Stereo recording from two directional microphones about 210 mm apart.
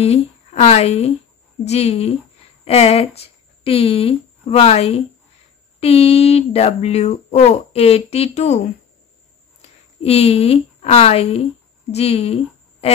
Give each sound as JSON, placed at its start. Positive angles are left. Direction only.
{"t": 0.0, "sound": "a woman's voice", "side_deg": 30}
{"t": 9.6, "sound": "a woman's voice", "side_deg": 30}